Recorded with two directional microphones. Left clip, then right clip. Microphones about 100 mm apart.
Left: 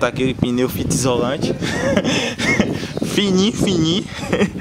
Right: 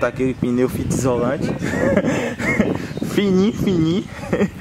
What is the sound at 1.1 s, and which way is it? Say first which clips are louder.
Speech: even; 25° left (ahead or behind).